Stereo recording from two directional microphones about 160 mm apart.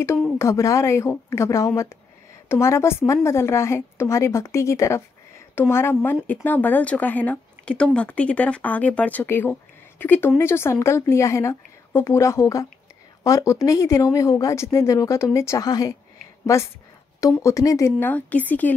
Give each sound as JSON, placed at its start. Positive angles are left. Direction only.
{"t": 0.4, "sound": "speech", "side_deg": 20}